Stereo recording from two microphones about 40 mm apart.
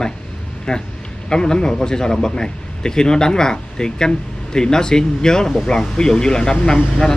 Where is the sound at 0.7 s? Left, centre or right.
Centre.